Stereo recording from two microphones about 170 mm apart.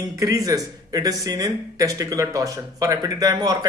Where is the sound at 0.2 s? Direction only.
20° right (ahead or behind).